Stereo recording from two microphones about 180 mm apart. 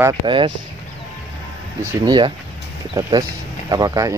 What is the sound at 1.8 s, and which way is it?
Speech, 25° right (ahead or behind).